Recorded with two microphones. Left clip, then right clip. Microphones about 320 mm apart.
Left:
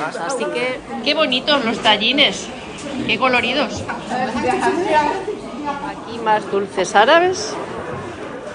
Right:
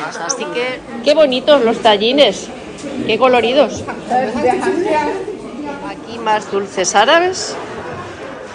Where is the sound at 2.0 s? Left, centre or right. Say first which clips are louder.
Right 4 dB; centre.